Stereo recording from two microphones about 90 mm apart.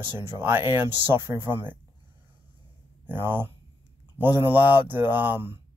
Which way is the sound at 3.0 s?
25° right (ahead or behind).